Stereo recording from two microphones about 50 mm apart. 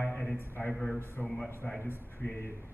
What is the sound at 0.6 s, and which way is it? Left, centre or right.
Speech, centre.